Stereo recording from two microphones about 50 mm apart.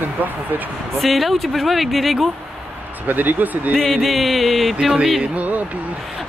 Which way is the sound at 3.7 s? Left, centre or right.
Centre.